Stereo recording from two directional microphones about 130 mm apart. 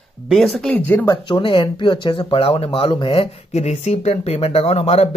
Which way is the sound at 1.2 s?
40° left (ahead or behind).